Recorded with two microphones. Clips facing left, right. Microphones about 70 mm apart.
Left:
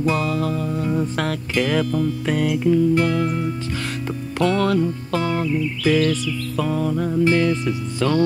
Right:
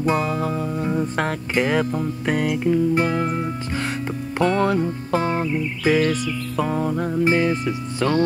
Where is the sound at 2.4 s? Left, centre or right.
Centre.